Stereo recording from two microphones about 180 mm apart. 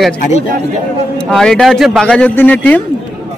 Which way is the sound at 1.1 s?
5° left (ahead or behind).